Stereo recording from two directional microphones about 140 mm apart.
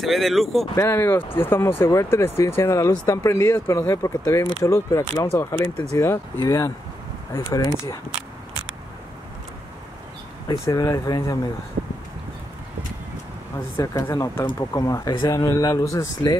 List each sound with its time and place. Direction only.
0.0 s speech: centre (ahead or behind)
0.7 s speech: 20° left (ahead or behind)
10.6 s speech: 25° left (ahead or behind)
13.7 s speech: 20° left (ahead or behind)